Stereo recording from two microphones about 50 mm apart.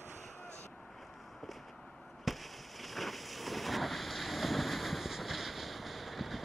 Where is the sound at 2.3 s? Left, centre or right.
Centre.